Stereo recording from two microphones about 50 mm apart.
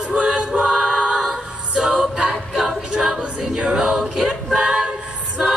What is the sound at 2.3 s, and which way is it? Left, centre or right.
Music, centre.